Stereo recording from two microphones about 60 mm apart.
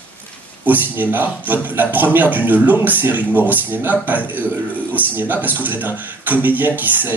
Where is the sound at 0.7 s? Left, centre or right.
Right.